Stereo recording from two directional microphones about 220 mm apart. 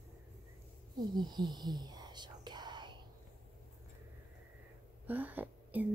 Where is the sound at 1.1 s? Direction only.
20° right (ahead or behind).